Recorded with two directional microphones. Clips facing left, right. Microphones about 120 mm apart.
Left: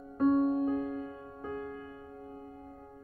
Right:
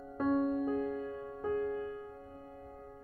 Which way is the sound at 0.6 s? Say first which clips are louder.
Left 2 dB; 45° left (ahead or behind).